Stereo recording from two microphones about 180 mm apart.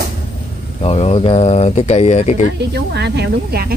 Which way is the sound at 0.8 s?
35° left (ahead or behind).